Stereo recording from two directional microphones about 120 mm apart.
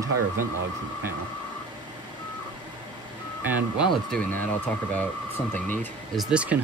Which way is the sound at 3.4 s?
15° right (ahead or behind).